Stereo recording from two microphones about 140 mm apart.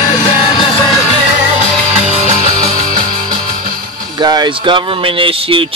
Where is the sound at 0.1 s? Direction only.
30° left (ahead or behind).